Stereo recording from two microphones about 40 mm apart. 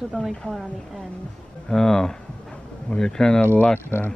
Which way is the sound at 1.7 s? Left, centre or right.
Centre.